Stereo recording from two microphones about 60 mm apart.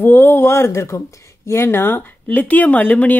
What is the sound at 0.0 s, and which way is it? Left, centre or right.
Speech, left.